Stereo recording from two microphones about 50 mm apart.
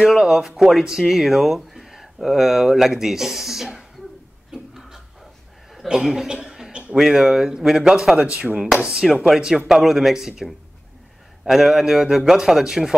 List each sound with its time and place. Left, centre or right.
0.0 s a man's voice: centre
4.5 s a sound: centre
5.9 s speech: centre
6.3 s chuckle: centre
6.7 s a sound: centre
7.0 s a man's voice: centre
9.1 s a man's voice: centre